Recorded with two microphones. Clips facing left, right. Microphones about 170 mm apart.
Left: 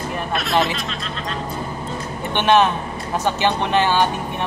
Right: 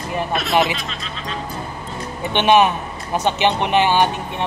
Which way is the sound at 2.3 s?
15° right (ahead or behind).